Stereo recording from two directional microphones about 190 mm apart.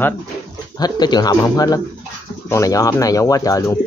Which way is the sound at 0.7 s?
20° left (ahead or behind).